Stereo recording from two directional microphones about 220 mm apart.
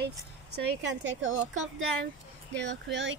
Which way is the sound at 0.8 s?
60° right (ahead or behind).